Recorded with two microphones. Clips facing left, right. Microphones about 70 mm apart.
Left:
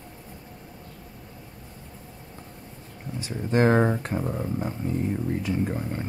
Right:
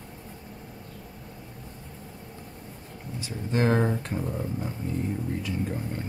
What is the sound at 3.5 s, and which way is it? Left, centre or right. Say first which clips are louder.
Speech: left 4 dB; left.